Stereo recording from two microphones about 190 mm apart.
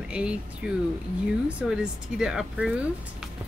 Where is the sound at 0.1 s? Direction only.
5° right (ahead or behind).